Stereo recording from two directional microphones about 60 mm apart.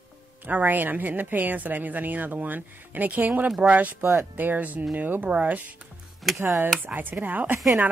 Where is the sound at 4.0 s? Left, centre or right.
Right.